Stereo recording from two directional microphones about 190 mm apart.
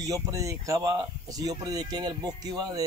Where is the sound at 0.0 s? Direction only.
15° right (ahead or behind).